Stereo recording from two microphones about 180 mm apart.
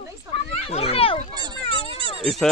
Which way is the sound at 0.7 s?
35° left (ahead or behind).